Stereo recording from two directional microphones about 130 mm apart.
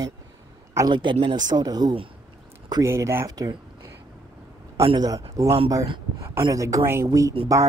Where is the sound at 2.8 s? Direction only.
20° right (ahead or behind).